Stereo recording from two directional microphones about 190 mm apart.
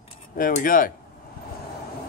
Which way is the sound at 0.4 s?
45° left (ahead or behind).